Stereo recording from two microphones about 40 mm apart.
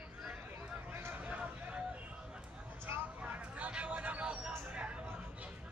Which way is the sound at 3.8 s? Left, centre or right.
Right.